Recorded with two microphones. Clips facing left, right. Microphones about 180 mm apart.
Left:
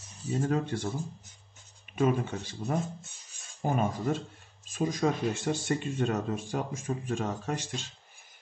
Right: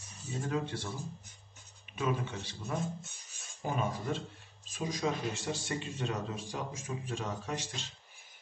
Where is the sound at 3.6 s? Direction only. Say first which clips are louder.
Left 6 dB; 45° left (ahead or behind).